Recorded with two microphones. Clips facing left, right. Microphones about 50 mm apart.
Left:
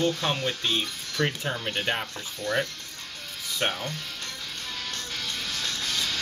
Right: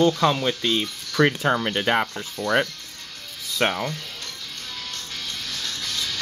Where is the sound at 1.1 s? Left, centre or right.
Right.